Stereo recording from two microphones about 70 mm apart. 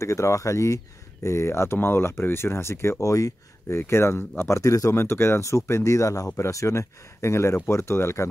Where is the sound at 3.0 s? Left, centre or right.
Left.